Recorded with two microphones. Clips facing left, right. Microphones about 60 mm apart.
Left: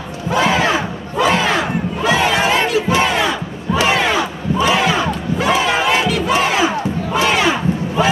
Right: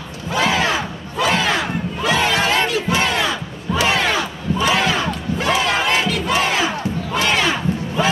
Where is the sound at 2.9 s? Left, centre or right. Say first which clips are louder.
Left 3 dB; centre.